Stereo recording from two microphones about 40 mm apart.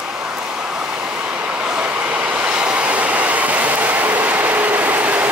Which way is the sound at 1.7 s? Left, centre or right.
Right.